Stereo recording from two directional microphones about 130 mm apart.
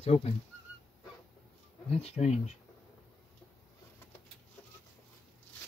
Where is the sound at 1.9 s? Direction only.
55° left (ahead or behind).